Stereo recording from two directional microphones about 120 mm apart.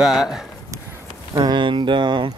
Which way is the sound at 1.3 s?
40° right (ahead or behind).